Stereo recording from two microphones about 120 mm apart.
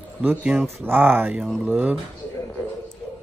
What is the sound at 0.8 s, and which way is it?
Speech, 15° right (ahead or behind).